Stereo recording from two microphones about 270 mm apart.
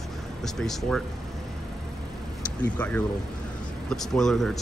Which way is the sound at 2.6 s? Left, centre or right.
Centre.